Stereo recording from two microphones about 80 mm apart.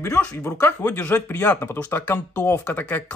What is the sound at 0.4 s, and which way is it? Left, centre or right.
Speech, left.